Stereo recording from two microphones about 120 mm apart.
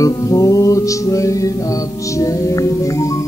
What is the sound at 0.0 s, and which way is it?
Music, 30° left (ahead or behind).